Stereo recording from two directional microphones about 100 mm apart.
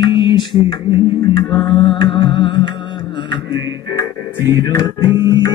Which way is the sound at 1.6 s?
55° left (ahead or behind).